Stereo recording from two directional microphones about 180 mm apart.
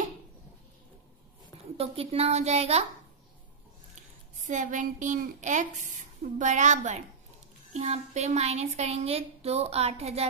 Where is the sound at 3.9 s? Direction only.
45° right (ahead or behind).